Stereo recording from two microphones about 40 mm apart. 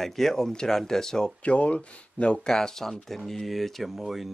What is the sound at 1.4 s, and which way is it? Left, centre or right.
Speech, left.